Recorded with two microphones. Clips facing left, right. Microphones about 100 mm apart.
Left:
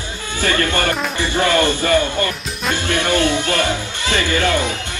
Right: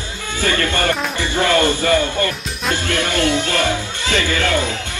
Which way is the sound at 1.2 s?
20° left (ahead or behind).